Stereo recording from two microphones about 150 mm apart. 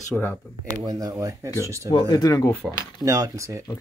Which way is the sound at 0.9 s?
25° right (ahead or behind).